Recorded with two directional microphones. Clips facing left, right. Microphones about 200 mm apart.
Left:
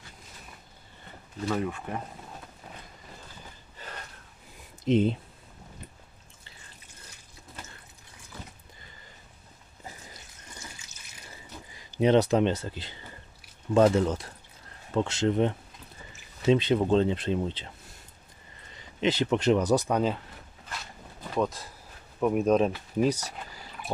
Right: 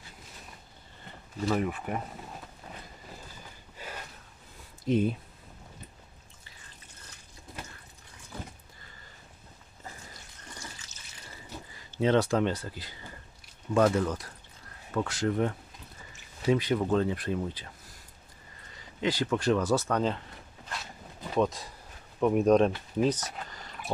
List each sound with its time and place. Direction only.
1.5 s speech: 10° right (ahead or behind)
3.7 s gasp: 10° right (ahead or behind)
4.8 s speech: 25° left (ahead or behind)
11.7 s speech: 15° left (ahead or behind)
18.9 s speech: 20° left (ahead or behind)
21.4 s speech: centre (ahead or behind)